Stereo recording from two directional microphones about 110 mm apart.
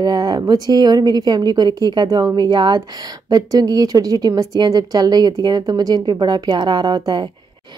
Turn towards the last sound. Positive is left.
turn(degrees=-40)  # may be behind; listen again after turning